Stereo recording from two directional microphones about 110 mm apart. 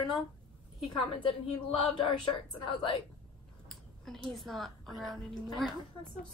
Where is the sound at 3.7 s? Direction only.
Centre (ahead or behind).